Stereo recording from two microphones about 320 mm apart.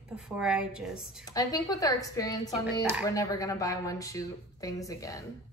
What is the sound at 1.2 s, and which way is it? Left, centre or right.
Speech, centre.